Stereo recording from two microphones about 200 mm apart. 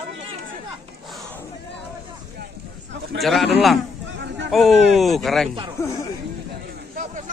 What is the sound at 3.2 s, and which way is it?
Speech, centre (ahead or behind).